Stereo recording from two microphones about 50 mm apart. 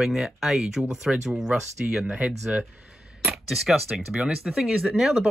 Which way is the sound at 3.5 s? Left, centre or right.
Centre.